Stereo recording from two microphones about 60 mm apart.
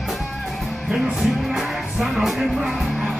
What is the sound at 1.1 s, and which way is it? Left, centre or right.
Music, centre.